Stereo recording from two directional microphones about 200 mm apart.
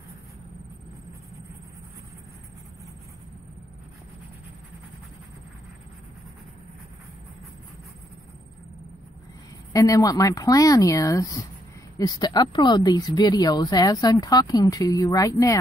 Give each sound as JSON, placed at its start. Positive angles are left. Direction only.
{"t": 9.7, "sound": "speech", "side_deg": 15}